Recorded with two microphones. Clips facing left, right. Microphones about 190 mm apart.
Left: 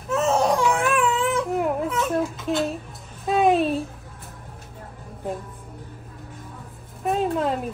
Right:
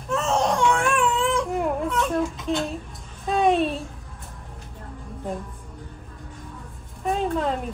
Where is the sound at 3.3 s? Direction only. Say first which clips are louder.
Left 1 dB; centre (ahead or behind).